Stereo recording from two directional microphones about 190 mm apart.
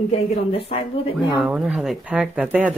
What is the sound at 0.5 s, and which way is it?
Speech, 30° left (ahead or behind).